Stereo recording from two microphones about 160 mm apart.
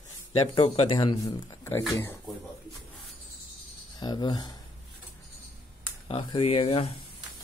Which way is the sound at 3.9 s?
25° left (ahead or behind).